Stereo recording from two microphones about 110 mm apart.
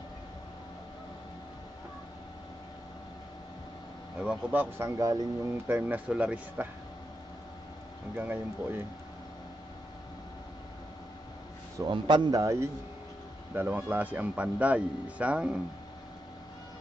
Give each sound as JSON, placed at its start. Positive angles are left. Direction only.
{"t": 4.2, "sound": "speech", "side_deg": -5}
{"t": 4.6, "sound": "a man's voice", "side_deg": -20}
{"t": 5.7, "sound": "speech", "side_deg": -15}
{"t": 8.2, "sound": "a man's voice", "side_deg": -20}
{"t": 11.9, "sound": "a man's voice", "side_deg": -40}
{"t": 13.6, "sound": "speech", "side_deg": -15}